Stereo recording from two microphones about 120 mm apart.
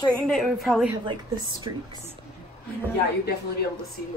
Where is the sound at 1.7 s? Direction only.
35° right (ahead or behind).